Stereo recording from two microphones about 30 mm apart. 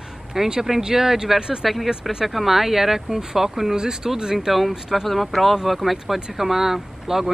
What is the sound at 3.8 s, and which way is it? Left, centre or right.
Speech, right.